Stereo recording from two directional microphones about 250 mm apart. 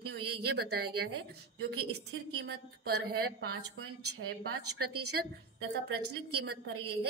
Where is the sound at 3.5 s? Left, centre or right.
Right.